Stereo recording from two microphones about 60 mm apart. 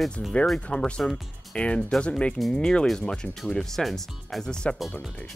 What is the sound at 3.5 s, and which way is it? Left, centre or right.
Speech, centre.